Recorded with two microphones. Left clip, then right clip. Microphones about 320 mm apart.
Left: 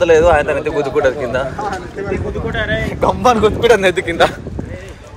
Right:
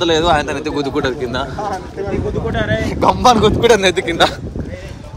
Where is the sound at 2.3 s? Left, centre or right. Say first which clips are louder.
Even; right.